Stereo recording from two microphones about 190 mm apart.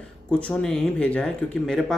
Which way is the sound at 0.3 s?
5° left (ahead or behind).